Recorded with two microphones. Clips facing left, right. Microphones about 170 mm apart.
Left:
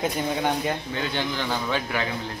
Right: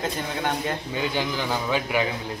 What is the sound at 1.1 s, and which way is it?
Speech, 10° right (ahead or behind).